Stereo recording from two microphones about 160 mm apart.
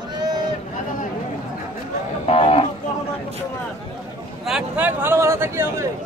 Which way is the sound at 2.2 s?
35° left (ahead or behind).